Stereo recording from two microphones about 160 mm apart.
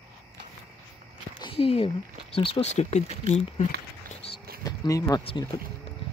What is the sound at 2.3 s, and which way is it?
Speech, 35° left (ahead or behind).